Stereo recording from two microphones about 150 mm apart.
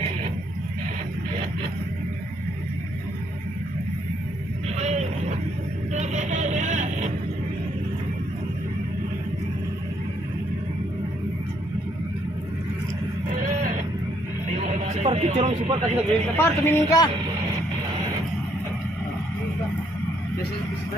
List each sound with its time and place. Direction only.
4.7 s vehicle: 45° right (ahead or behind)
14.6 s a sound: 45° right (ahead or behind)
16.3 s speech: 15° left (ahead or behind)